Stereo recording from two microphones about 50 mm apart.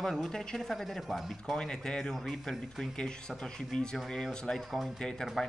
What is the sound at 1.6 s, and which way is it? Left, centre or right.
A man's voice, centre.